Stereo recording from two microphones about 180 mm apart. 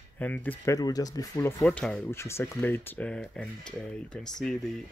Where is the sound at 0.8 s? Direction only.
20° left (ahead or behind).